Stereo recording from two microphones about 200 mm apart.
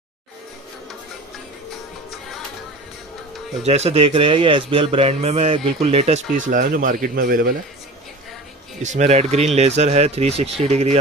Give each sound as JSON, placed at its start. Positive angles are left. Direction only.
{"t": 3.6, "sound": "a man's voice", "side_deg": -30}
{"t": 8.8, "sound": "speech", "side_deg": -35}